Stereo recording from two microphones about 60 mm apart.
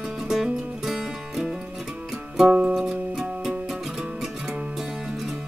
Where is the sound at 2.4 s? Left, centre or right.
Centre.